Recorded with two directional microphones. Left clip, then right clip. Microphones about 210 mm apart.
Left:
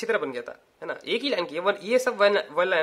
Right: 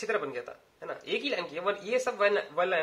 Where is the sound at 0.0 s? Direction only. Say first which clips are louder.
Left 5 dB; 40° left (ahead or behind).